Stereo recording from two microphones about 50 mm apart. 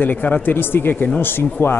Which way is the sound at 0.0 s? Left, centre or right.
Left.